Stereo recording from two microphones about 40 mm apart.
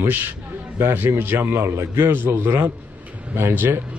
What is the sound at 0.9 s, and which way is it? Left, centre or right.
A man's voice, right.